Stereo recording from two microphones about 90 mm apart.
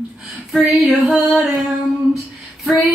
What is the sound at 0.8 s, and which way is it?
Music, 20° right (ahead or behind).